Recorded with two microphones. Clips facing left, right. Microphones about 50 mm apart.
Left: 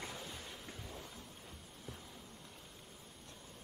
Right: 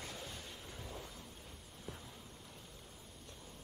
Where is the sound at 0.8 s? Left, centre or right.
Centre.